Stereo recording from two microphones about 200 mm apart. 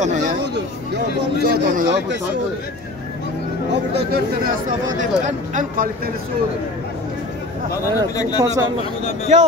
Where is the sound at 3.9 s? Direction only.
55° right (ahead or behind).